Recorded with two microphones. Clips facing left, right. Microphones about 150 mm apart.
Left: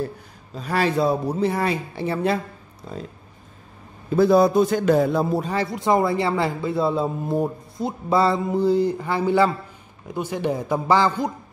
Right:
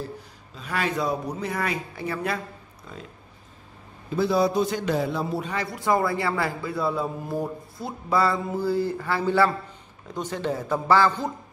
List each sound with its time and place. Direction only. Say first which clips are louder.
0.6 s a man's voice: left 6 dB; 35° left (ahead or behind)
4.1 s a man's voice: left 6 dB; 50° left (ahead or behind)
5.7 s a man's voice: left 3 dB; 20° left (ahead or behind)